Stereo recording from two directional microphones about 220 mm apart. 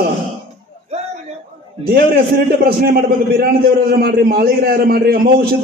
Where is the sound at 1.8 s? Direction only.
45° right (ahead or behind).